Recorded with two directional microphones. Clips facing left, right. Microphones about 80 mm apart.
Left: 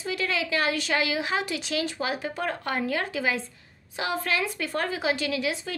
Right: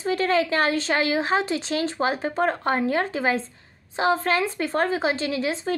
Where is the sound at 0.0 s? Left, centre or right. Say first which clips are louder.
Right 7 dB; right.